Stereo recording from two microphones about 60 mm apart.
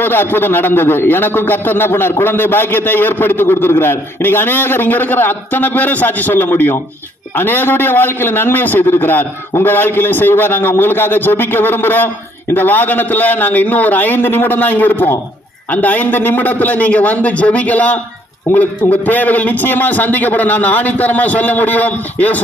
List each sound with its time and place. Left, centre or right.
0.0 s a man's voice: left